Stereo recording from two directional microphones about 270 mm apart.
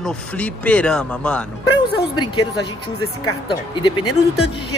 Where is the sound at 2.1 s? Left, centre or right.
Centre.